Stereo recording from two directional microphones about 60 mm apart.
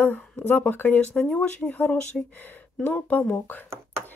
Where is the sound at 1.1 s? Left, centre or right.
Centre.